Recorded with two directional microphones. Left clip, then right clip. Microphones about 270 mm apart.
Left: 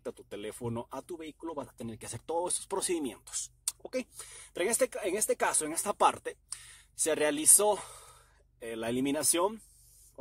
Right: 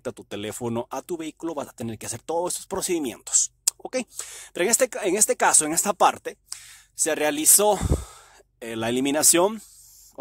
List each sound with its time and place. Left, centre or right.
0.0 s speech: right